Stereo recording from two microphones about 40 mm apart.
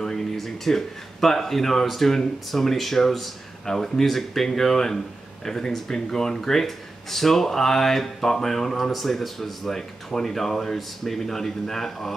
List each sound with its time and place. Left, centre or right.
0.0 s speech: centre